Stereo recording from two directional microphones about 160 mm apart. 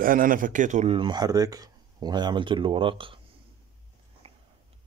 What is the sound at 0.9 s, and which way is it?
Speech, 25° right (ahead or behind).